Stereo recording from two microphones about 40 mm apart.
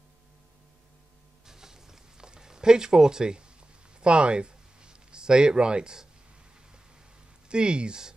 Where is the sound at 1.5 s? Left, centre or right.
Centre.